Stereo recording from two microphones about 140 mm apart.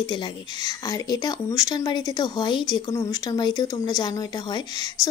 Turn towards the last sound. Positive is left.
turn(degrees=25)  # may be behind; listen again after turning